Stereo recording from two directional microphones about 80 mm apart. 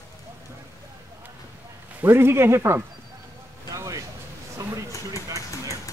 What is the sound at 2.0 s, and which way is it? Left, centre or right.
Speech, right.